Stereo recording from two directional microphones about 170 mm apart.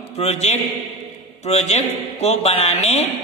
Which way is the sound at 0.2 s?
40° left (ahead or behind).